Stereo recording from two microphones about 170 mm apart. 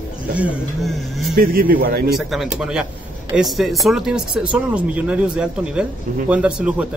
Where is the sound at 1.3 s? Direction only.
60° right (ahead or behind).